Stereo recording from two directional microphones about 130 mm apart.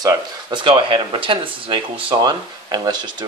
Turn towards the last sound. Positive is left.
turn(degrees=-35)  # may be behind; listen again after turning